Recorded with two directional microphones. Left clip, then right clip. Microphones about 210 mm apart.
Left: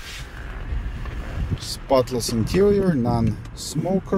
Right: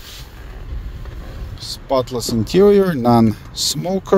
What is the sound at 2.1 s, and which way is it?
Speech, 20° right (ahead or behind).